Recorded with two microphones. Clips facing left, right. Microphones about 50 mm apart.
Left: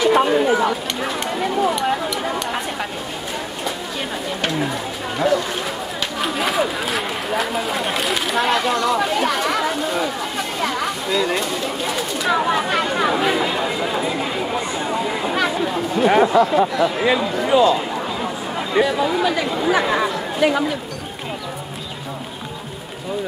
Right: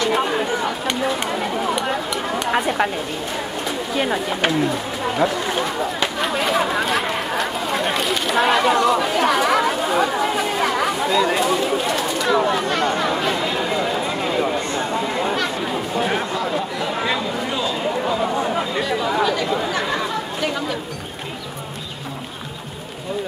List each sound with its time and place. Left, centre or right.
0.0 s a sound: centre
4.0 s speech: centre
5.2 s speech: centre
6.2 s a sound: centre
11.9 s chatter: centre
16.1 s speech: left
17.0 s speech: centre
18.8 s speech: centre